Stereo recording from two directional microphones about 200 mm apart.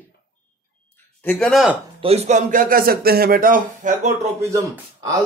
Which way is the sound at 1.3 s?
5° left (ahead or behind).